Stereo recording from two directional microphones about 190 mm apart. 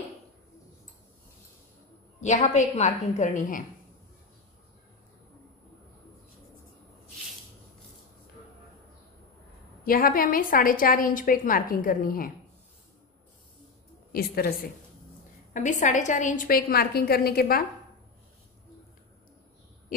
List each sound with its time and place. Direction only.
2.2 s a woman's voice: 40° left (ahead or behind)
9.8 s a woman's voice: 50° left (ahead or behind)
14.1 s a woman's voice: 55° left (ahead or behind)
15.5 s a woman's voice: 40° left (ahead or behind)